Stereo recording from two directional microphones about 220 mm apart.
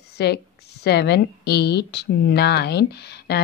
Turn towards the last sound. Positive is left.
turn(degrees=50)  # may be behind; listen again after turning